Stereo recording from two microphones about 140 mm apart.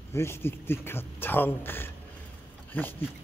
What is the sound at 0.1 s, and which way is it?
A man's voice, 20° left (ahead or behind).